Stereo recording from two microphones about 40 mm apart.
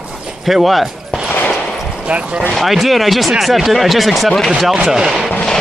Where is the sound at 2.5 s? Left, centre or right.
Centre.